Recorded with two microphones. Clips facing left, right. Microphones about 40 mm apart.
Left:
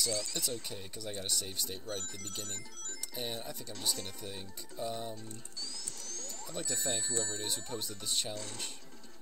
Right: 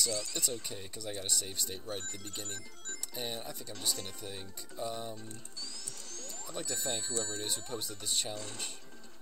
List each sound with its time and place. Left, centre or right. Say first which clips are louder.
0.0 s speech: even; centre
3.2 s speech: even; centre
6.0 s music: left 1 dB; centre
6.4 s speech: even; centre